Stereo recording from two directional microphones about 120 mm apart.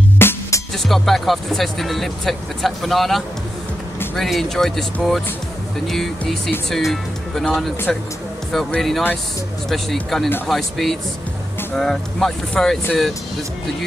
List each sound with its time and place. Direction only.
0.2 s music: 20° left (ahead or behind)
0.8 s speech: centre (ahead or behind)